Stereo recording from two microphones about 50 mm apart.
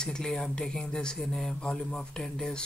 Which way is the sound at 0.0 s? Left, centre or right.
Centre.